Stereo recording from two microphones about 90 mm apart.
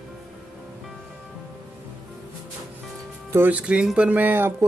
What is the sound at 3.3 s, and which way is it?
Speech, 25° right (ahead or behind).